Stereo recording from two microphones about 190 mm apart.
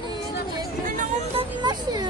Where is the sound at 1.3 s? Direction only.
25° right (ahead or behind).